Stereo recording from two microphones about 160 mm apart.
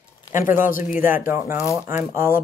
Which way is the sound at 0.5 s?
55° left (ahead or behind).